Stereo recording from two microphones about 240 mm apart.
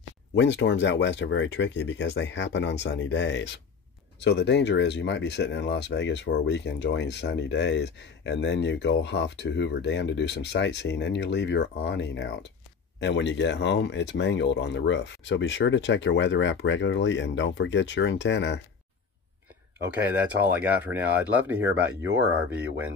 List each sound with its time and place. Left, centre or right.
0.4 s speech: left
20.1 s speech: centre